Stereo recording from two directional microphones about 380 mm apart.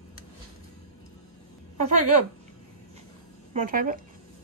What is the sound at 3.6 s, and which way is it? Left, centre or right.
Speech, right.